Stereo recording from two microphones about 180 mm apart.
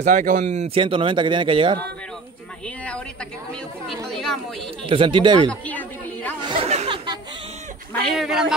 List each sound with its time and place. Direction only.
0.0 s speech: 45° right (ahead or behind); by 1.8 s 30° right (ahead or behind)
2.6 s speech: 5° left (ahead or behind)
4.1 s speech: centre (ahead or behind)
4.8 s speech: 30° right (ahead or behind)
5.5 s a sound: 10° left (ahead or behind)
6.4 s chatter: 30° right (ahead or behind)
8.0 s speech: centre (ahead or behind)